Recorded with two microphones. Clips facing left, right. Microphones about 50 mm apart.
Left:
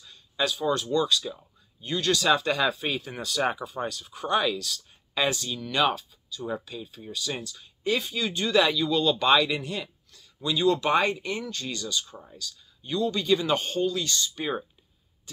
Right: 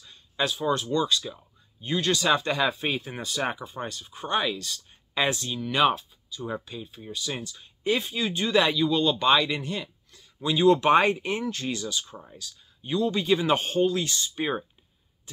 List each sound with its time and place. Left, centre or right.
0.0 s a sound: centre
0.9 s speech: centre
10.4 s speech: right